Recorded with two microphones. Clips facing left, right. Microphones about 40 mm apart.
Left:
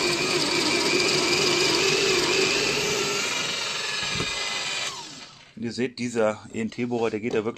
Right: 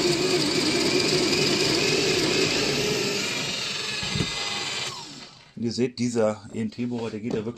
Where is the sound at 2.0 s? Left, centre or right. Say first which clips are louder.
Left 1 dB; centre.